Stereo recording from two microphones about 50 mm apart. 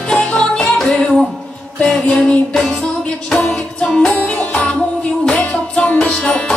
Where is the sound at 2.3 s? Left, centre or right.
Left.